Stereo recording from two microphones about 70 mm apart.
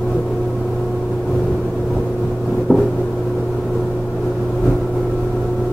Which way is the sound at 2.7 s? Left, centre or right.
Left.